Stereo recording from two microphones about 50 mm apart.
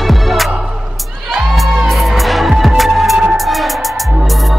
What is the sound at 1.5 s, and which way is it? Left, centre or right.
Music, centre.